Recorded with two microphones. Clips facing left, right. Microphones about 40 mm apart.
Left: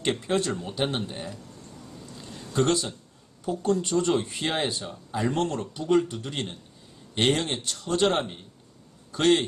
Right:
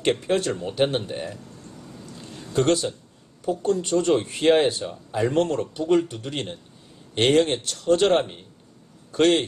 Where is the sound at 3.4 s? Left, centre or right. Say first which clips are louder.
Right 2 dB; centre.